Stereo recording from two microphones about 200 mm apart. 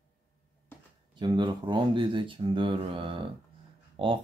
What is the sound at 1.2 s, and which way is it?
Speech, 20° right (ahead or behind).